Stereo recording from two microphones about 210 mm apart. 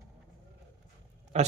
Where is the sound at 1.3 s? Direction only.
30° right (ahead or behind).